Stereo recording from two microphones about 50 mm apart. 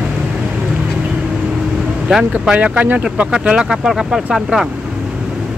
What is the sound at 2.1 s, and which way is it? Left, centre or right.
Speech, centre.